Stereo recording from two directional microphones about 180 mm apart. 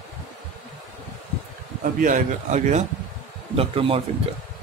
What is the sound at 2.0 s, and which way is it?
A man's voice, 45° right (ahead or behind).